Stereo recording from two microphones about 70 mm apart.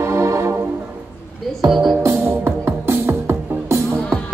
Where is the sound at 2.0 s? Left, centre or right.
Right.